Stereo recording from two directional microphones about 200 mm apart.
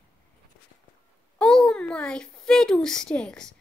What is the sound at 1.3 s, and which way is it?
A child's voice, 5° left (ahead or behind).